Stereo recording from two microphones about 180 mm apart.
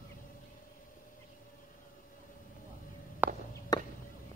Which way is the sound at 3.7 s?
20° left (ahead or behind).